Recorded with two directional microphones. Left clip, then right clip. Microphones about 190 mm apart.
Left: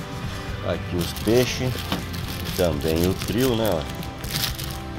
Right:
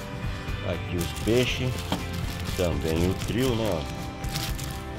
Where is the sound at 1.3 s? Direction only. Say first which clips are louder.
Left 4 dB; centre (ahead or behind).